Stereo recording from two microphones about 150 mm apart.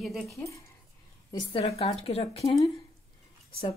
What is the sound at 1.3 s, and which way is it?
A woman's voice, 35° left (ahead or behind).